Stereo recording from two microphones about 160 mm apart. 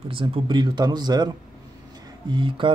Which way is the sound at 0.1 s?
35° right (ahead or behind).